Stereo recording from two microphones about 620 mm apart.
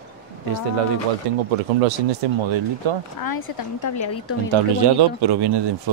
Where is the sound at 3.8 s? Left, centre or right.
Left.